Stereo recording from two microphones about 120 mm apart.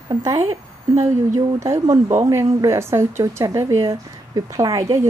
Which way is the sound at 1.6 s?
25° right (ahead or behind).